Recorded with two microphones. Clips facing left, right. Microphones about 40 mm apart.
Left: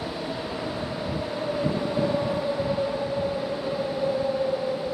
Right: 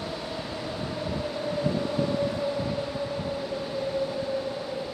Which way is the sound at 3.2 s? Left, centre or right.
Centre.